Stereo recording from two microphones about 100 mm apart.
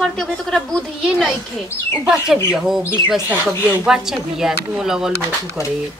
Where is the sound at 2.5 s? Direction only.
5° right (ahead or behind).